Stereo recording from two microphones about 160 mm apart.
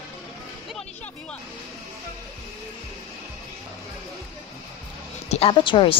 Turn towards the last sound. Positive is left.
turn(degrees=30)  # may be behind; listen again after turning